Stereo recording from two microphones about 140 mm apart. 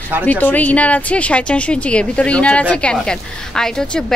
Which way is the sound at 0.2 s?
10° left (ahead or behind).